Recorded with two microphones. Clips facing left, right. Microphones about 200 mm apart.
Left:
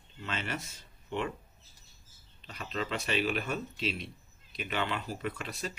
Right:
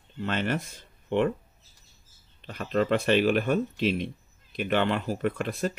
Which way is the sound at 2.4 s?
55° right (ahead or behind).